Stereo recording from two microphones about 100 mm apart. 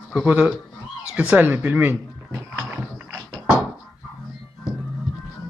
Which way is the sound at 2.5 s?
20° right (ahead or behind).